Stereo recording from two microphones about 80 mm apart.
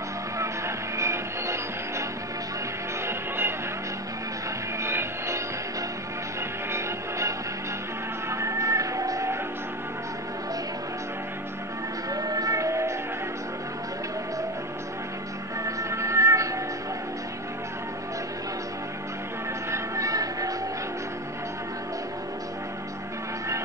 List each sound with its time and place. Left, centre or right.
0.4 s music: right
3.1 s music: right
4.8 s music: right
6.7 s music: right
12.1 s music: right
15.6 s music: right
19.7 s music: right